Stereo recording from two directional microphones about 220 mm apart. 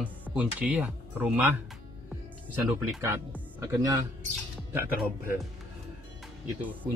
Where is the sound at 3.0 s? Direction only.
10° right (ahead or behind).